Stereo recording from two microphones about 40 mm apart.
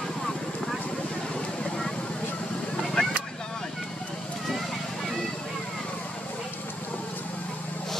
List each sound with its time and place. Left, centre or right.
3.0 s vehicle: left